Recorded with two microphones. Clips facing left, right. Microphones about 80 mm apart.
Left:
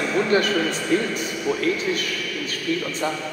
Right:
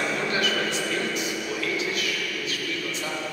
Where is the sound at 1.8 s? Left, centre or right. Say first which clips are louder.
Left 3 dB; left.